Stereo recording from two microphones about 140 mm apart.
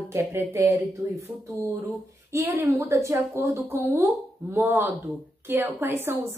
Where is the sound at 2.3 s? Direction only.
20° right (ahead or behind).